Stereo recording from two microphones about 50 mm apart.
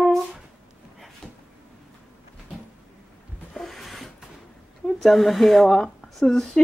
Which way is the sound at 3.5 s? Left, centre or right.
Centre.